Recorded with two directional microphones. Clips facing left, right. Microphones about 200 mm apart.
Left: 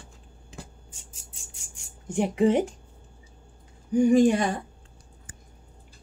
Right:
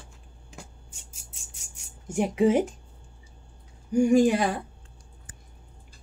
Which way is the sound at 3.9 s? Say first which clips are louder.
Left 1 dB; 10° right (ahead or behind).